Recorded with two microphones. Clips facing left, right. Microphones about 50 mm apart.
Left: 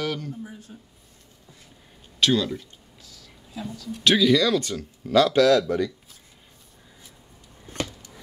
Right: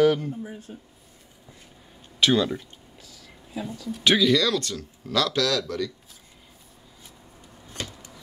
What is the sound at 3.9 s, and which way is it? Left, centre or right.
Speech, centre.